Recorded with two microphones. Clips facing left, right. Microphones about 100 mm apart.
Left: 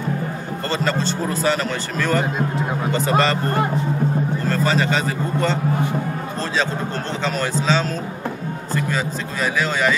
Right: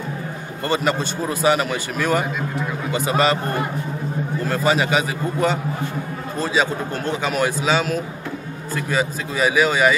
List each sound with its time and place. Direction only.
0.7 s a man's voice: 15° right (ahead or behind)
4.5 s a man's voice: 10° right (ahead or behind)